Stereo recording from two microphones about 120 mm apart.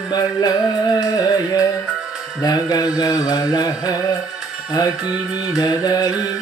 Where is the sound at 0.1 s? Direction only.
35° left (ahead or behind).